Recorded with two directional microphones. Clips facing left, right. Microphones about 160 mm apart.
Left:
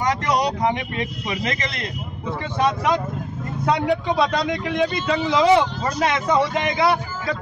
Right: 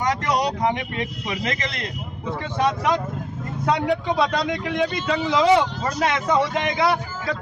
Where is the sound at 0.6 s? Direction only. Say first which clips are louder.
Left 1 dB; 20° left (ahead or behind).